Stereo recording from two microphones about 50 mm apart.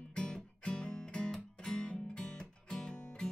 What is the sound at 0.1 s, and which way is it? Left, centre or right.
Music, centre.